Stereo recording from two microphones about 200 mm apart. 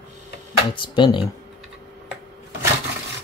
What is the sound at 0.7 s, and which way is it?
Speech, 25° left (ahead or behind).